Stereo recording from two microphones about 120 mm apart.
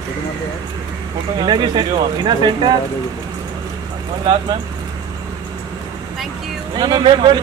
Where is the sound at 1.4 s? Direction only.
40° right (ahead or behind).